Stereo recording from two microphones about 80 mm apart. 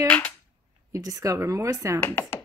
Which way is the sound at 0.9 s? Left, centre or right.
Right.